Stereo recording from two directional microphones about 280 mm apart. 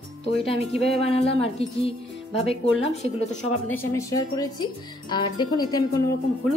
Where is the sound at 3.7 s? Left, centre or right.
Centre.